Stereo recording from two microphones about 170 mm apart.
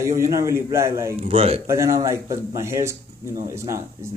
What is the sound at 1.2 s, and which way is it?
Speech, 40° right (ahead or behind).